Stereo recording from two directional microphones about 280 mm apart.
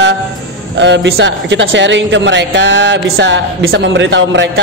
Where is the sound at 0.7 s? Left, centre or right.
Right.